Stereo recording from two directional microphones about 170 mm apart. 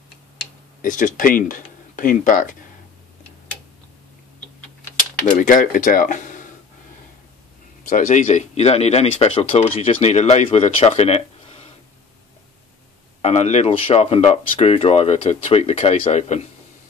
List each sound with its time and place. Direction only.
0.8 s speech: 50° left (ahead or behind)
5.2 s speech: 50° left (ahead or behind)
7.9 s speech: 45° left (ahead or behind)
13.2 s speech: 40° left (ahead or behind)